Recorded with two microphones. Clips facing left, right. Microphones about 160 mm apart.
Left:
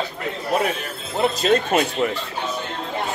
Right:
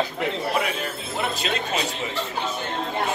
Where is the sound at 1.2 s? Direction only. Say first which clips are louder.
Left 9 dB; 40° left (ahead or behind).